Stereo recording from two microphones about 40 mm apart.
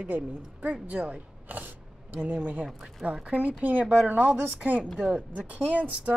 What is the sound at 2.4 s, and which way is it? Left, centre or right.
Speech, right.